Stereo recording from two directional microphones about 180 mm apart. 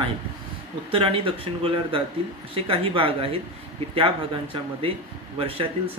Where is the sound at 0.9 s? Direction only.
30° right (ahead or behind).